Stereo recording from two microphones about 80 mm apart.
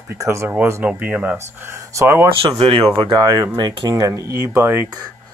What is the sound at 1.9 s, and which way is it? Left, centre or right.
Speech, right.